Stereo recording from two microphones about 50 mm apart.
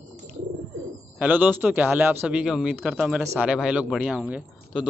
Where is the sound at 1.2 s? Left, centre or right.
Right.